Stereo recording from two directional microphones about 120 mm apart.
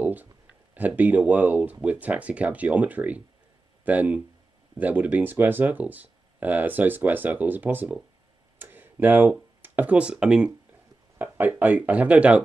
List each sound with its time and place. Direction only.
0.0 s a sound: 15° right (ahead or behind)
0.7 s speech: 15° right (ahead or behind)
8.5 s tick-tock: 15° right (ahead or behind)
9.6 s speech: 15° right (ahead or behind)